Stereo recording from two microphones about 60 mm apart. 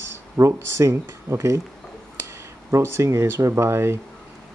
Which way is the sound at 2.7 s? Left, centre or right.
Right.